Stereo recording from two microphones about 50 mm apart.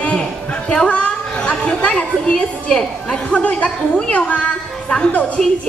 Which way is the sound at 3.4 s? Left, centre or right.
Left.